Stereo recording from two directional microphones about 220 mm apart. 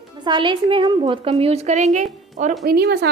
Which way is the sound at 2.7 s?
45° right (ahead or behind).